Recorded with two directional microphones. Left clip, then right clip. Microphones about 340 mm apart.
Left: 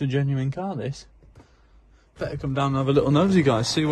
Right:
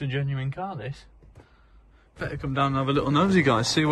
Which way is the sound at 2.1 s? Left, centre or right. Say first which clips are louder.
Even; centre.